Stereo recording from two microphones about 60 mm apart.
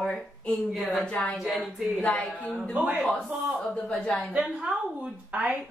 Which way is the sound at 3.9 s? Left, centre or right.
Centre.